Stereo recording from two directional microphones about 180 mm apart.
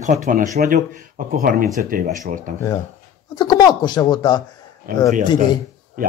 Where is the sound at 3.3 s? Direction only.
25° left (ahead or behind).